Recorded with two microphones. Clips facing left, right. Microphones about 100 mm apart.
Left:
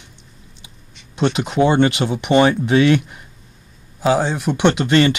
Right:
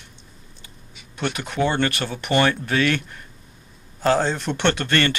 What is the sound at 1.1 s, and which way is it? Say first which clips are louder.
Speech: left 8 dB; 20° left (ahead or behind).